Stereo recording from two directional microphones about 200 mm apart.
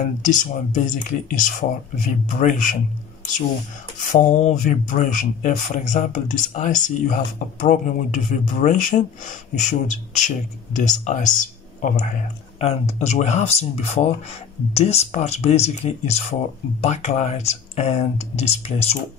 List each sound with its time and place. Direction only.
0.0 s speech: 40° left (ahead or behind)
4.0 s speech: 40° left (ahead or behind)